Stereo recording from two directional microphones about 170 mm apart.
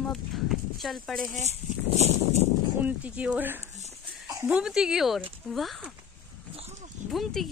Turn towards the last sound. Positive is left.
turn(degrees=0)  # may be behind; listen again after turning